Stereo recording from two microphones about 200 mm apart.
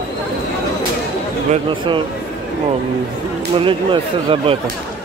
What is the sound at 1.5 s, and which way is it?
Speech, 25° right (ahead or behind).